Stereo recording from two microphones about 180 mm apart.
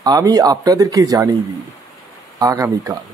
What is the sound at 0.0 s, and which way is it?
Speech, 20° right (ahead or behind).